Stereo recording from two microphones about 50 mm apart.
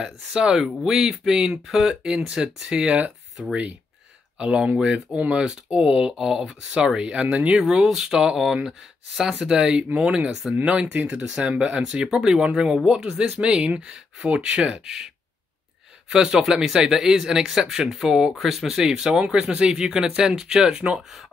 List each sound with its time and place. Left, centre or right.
0.0 s speech: centre
4.4 s speech: centre
7.7 s speech: centre
10.9 s speech: right
11.3 s speech: centre
16.1 s speech: centre